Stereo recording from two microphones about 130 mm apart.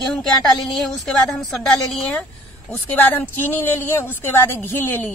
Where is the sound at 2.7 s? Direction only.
15° left (ahead or behind).